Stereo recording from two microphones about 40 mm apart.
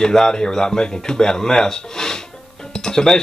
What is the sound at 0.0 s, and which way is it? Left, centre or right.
A man's voice, centre.